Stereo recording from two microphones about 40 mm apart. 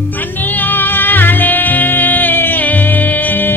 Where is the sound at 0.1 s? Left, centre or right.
Left.